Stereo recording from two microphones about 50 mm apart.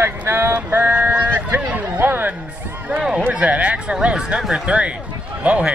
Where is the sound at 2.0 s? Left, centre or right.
Right.